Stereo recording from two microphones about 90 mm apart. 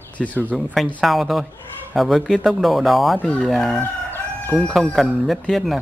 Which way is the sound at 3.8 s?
25° left (ahead or behind).